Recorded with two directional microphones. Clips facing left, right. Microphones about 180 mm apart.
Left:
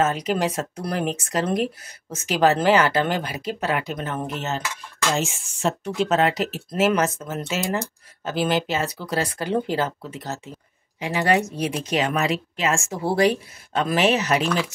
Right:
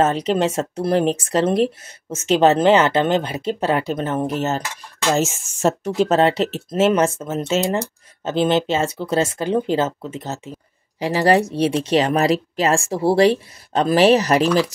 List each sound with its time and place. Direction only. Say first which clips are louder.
0.0 s speech: right 4 dB; 30° right (ahead or behind)
4.4 s speech: right 6 dB; 40° right (ahead or behind)
5.9 s speech: right 4 dB; 35° right (ahead or behind)
11.0 s speech: right 5 dB; 35° right (ahead or behind)